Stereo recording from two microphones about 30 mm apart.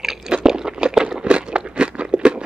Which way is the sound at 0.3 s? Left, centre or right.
Right.